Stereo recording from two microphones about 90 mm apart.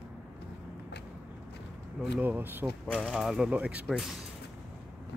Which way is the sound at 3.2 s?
5° right (ahead or behind).